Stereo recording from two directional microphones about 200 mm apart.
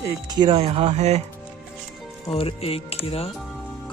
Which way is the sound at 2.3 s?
30° left (ahead or behind).